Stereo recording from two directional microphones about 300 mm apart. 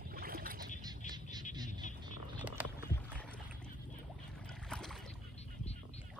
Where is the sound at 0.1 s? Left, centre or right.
Right.